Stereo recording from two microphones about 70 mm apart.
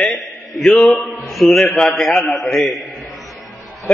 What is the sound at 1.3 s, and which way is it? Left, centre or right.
A man's voice, centre.